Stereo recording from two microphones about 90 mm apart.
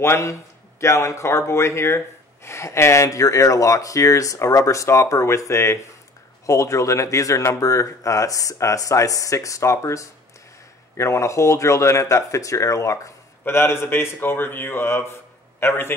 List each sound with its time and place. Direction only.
0.0 s a man's voice: 30° left (ahead or behind)